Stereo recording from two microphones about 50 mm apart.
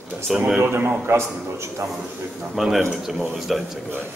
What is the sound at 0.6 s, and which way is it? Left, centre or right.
Speech, right.